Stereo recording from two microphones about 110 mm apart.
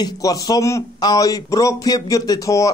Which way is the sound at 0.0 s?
35° left (ahead or behind).